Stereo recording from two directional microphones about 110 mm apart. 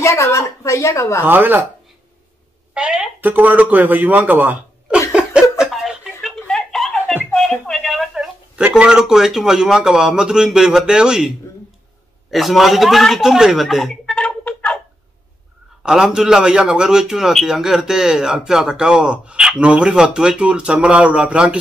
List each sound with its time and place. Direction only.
0.0 s a woman's voice: 25° left (ahead or behind)
1.2 s a man's voice: 15° right (ahead or behind)
2.7 s speech: 10° right (ahead or behind)
5.1 s a sound: 5° right (ahead or behind)
7.3 s speech: 5° left (ahead or behind)
15.8 s a man's voice: 5° right (ahead or behind)